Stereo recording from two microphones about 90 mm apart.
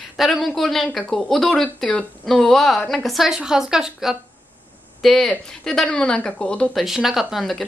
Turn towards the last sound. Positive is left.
turn(degrees=0)  # may be behind; listen again after turning